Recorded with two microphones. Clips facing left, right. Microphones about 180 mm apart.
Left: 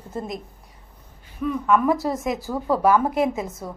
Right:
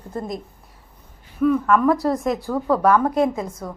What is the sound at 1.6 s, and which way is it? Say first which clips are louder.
A woman's voice: right 2 dB; centre (ahead or behind).